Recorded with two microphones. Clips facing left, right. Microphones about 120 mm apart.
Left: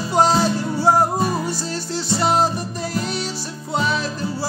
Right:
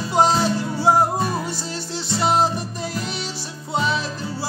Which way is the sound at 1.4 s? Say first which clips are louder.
Left 3 dB; 20° right (ahead or behind).